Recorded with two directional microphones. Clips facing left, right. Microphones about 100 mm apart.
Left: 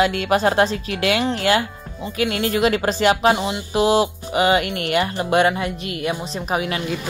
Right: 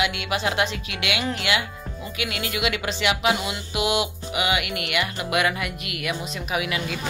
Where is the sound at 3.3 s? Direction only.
30° left (ahead or behind).